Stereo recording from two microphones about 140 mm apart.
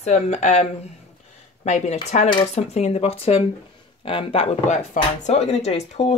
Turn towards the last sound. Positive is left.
turn(degrees=50)  # may be behind; listen again after turning